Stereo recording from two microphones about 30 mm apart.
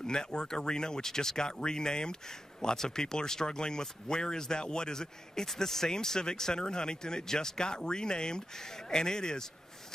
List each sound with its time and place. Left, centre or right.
0.0 s speech: left